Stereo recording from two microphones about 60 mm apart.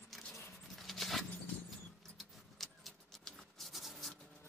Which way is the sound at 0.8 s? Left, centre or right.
Centre.